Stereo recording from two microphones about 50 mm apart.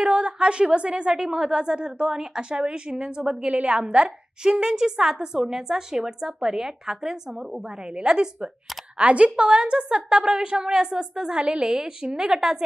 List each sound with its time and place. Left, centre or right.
0.0 s a woman's voice: right